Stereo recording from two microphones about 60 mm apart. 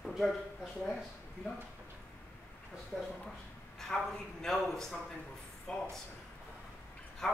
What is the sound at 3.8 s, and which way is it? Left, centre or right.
Speech, centre.